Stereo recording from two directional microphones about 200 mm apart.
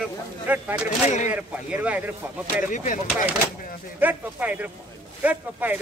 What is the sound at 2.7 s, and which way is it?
Speech, 40° left (ahead or behind).